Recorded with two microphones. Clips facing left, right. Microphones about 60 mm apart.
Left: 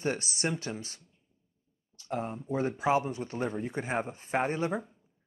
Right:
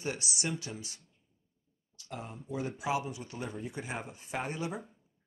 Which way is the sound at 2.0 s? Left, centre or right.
Left.